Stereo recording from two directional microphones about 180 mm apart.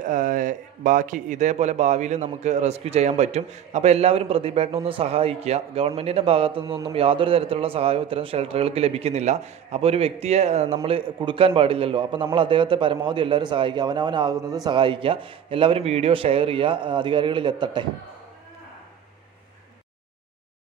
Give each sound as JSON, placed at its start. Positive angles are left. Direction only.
{"t": 0.0, "sound": "a man's voice", "side_deg": -45}